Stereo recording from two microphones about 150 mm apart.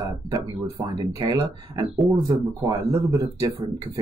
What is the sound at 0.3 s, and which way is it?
Speech, 30° right (ahead or behind).